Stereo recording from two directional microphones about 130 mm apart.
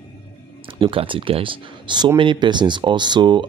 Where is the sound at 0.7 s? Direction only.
45° right (ahead or behind).